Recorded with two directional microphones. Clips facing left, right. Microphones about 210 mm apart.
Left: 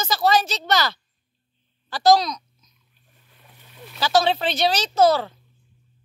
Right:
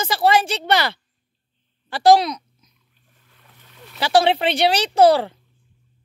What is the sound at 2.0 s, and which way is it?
Speech, 30° right (ahead or behind).